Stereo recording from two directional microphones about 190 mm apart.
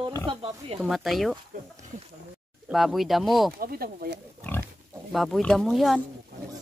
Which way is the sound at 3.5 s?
50° right (ahead or behind).